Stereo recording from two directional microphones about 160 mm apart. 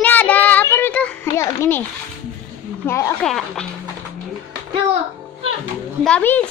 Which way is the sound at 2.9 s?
20° left (ahead or behind).